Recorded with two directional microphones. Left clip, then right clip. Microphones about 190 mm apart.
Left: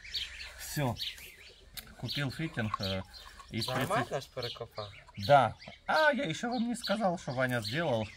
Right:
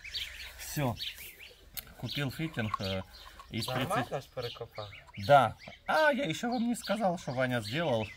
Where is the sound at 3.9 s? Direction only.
40° left (ahead or behind).